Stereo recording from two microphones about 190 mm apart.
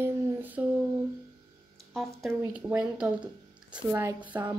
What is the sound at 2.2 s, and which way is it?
A woman's voice, 5° right (ahead or behind).